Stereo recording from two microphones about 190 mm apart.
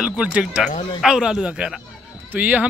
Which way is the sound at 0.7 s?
35° left (ahead or behind).